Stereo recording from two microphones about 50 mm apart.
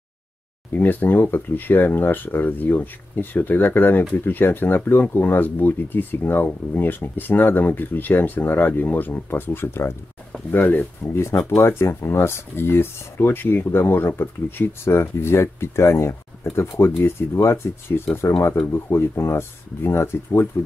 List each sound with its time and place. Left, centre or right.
0.7 s speech: left
10.5 s speech: left
11.1 s speech: left